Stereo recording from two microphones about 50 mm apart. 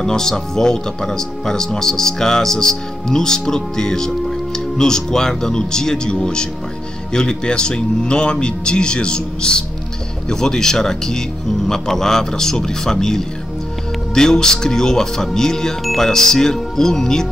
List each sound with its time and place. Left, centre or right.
0.0 s speech: centre